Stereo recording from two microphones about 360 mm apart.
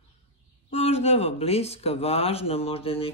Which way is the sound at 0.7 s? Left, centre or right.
Centre.